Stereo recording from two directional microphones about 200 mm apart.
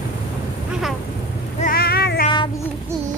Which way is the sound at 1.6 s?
50° left (ahead or behind).